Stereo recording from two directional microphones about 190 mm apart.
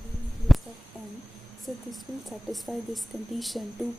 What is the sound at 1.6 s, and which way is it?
Speech, centre (ahead or behind).